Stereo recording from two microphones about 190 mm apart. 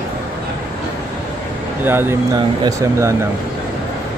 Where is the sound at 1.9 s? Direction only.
10° right (ahead or behind).